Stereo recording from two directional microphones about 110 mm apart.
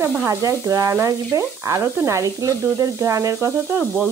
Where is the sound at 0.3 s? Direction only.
30° right (ahead or behind).